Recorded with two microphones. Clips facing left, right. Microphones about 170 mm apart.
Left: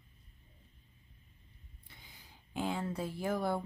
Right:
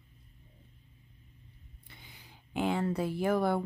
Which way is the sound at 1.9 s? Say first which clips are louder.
Right 4 dB; 70° right (ahead or behind).